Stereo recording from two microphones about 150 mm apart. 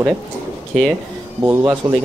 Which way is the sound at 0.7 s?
Centre (ahead or behind).